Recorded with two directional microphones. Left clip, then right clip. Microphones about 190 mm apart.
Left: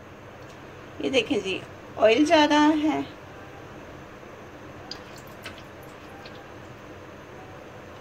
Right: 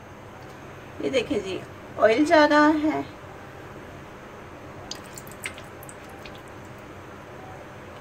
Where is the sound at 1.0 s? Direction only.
10° left (ahead or behind).